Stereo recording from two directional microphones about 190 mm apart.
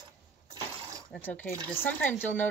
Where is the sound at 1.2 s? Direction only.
10° left (ahead or behind).